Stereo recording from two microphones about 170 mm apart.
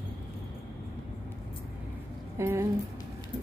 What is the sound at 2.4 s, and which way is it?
Speech, 15° right (ahead or behind).